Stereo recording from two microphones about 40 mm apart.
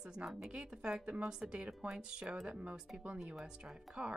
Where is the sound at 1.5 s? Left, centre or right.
Right.